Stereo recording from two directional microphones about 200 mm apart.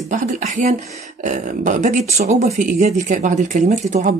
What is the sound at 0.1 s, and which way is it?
Speech, 35° right (ahead or behind).